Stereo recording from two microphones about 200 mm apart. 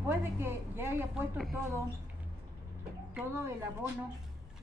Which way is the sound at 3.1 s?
10° right (ahead or behind).